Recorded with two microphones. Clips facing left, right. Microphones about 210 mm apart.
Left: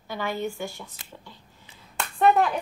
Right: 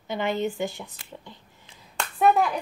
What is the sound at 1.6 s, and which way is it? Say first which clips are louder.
Clapping: even; centre (ahead or behind).